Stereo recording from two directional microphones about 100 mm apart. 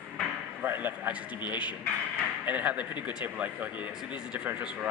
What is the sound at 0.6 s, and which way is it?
Speech, 20° right (ahead or behind).